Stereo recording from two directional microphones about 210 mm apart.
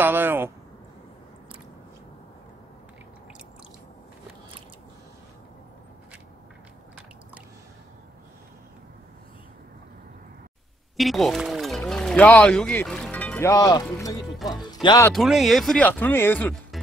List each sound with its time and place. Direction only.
0.0 s a sound: 10° right (ahead or behind)
11.0 s speech: centre (ahead or behind); by 15.0 s 20° left (ahead or behind)
15.1 s speech: centre (ahead or behind)